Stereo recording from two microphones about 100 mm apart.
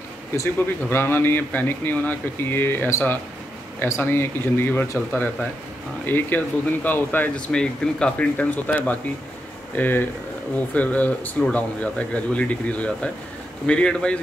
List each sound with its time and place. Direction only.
0.4 s speech: 25° left (ahead or behind)